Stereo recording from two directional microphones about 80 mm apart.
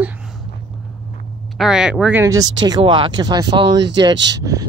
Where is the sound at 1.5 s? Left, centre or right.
Centre.